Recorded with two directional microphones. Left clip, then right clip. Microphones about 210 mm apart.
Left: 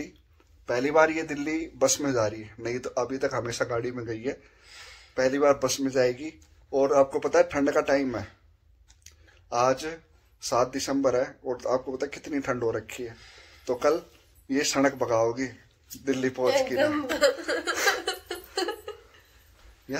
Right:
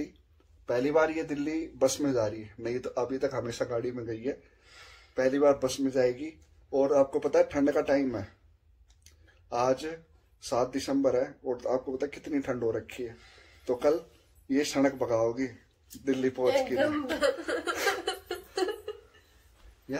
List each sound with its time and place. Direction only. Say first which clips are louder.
0.7 s a man's voice: left 4 dB; 10° left (ahead or behind)
9.0 s a sound: left 6 dB; 10° left (ahead or behind)
10.4 s a man's voice: left 4 dB; 10° left (ahead or behind)
16.7 s speech: left 3 dB; 25° right (ahead or behind)
18.0 s laughter: left 2 dB; 20° right (ahead or behind)